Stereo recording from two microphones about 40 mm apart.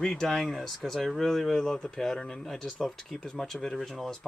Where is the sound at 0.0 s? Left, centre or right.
Centre.